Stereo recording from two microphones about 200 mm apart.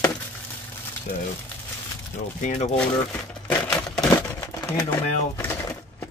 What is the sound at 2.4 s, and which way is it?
Speech, 35° left (ahead or behind).